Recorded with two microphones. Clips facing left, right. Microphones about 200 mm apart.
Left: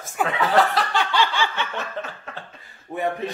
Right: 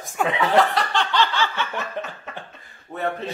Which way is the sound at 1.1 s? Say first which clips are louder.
Right 1 dB; 15° left (ahead or behind).